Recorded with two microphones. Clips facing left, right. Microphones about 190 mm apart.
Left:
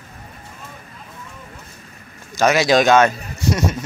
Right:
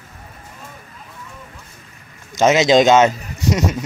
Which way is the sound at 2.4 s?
20° right (ahead or behind).